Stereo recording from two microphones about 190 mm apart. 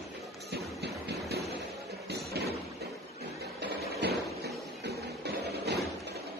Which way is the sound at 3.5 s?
60° right (ahead or behind).